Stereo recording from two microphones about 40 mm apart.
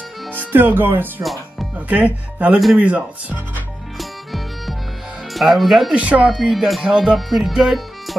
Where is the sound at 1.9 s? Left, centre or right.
Right.